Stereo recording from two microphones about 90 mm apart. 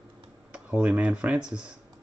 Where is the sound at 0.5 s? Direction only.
10° right (ahead or behind).